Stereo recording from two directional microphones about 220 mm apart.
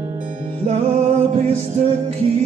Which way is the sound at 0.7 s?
30° right (ahead or behind).